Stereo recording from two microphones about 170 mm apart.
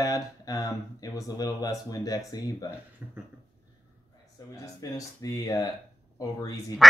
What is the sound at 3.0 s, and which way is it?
Speech, 5° right (ahead or behind).